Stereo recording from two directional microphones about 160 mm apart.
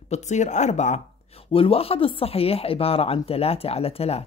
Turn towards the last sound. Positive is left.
turn(degrees=40)  # may be behind; listen again after turning